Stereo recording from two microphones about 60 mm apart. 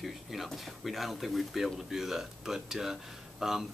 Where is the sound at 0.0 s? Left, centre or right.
Centre.